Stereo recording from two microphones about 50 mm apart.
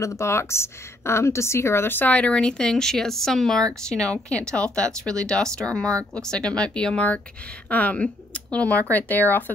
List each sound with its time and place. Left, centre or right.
0.0 s a woman's voice: left
2.0 s speech: left; by 4.2 s centre
4.3 s speech: left
8.9 s speech: left